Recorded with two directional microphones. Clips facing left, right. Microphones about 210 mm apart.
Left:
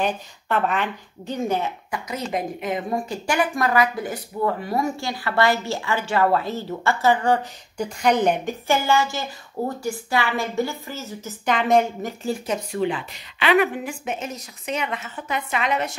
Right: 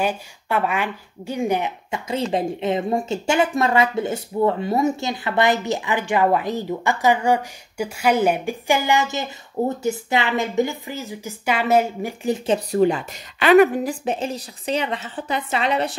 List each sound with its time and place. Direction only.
0.0 s a woman's voice: 10° right (ahead or behind)
1.9 s a woman's voice: 30° right (ahead or behind)
12.4 s a woman's voice: 40° right (ahead or behind)